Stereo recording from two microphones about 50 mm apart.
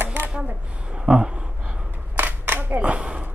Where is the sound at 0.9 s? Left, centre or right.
Centre.